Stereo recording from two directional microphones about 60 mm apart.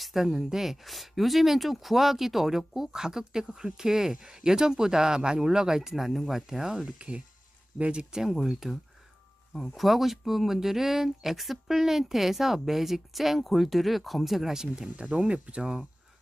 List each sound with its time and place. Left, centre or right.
0.0 s speech: centre
7.0 s speech: right
15.0 s speech: right